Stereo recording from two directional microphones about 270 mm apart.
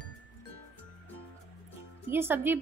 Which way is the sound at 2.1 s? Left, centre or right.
Centre.